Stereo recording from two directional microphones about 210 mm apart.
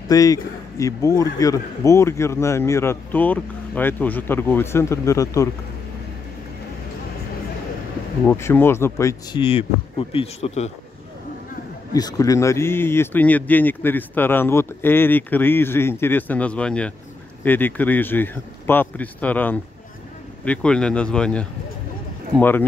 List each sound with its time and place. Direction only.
0.1 s a man's voice: 15° left (ahead or behind)
8.3 s a man's voice: 10° left (ahead or behind)
9.4 s speech: 25° left (ahead or behind)
11.9 s a man's voice: 15° left (ahead or behind)